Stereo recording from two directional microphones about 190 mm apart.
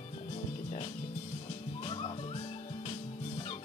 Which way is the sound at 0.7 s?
35° left (ahead or behind).